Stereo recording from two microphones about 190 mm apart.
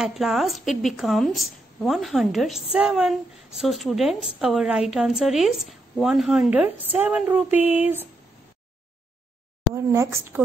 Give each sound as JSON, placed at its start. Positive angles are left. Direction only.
{"t": 0.0, "sound": "a woman's voice", "side_deg": 0}
{"t": 9.8, "sound": "speech", "side_deg": -15}